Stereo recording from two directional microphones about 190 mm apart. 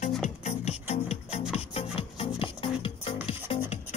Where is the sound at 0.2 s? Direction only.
40° left (ahead or behind).